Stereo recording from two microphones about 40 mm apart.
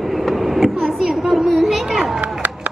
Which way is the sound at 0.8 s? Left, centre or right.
Centre.